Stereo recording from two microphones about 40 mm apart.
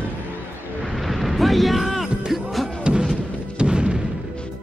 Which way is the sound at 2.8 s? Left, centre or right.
Centre.